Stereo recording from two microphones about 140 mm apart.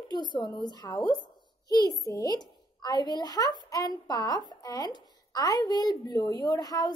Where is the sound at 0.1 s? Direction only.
30° left (ahead or behind).